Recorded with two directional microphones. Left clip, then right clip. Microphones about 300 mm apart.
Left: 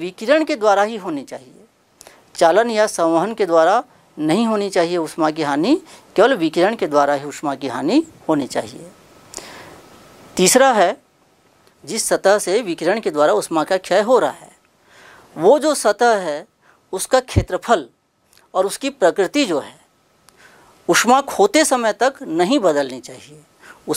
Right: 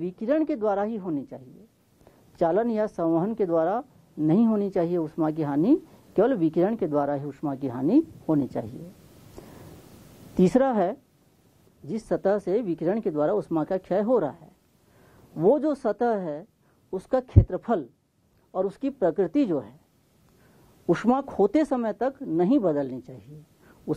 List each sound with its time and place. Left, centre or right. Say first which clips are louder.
0.0 s speech: left 9 dB; centre
9.3 s a sound: left 12 dB; centre
10.3 s speech: left 9 dB; centre
20.9 s speech: left 11 dB; centre